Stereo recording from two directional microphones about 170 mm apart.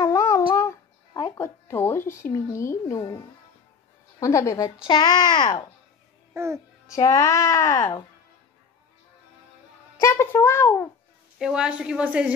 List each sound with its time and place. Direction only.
0.0 s a sound: 15° left (ahead or behind)
0.6 s a child's voice: 15° left (ahead or behind)
6.3 s a child's voice: 15° right (ahead or behind)
6.9 s a child's voice: 20° left (ahead or behind)
9.9 s a child's voice: 15° left (ahead or behind)
11.3 s a woman's voice: 5° right (ahead or behind)